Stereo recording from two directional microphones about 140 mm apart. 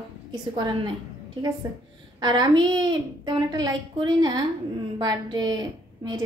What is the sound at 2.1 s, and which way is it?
A woman's voice, 30° right (ahead or behind).